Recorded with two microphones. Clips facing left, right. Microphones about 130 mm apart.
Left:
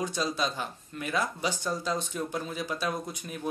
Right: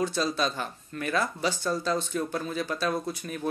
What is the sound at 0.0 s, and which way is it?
Speech, 15° left (ahead or behind).